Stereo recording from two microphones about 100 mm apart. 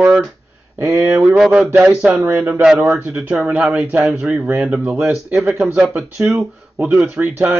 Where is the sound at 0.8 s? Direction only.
25° right (ahead or behind).